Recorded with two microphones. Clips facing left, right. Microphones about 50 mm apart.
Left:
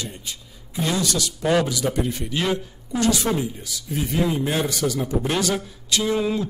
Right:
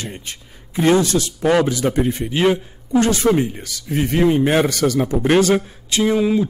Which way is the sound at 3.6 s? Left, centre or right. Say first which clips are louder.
Right 6 dB; right.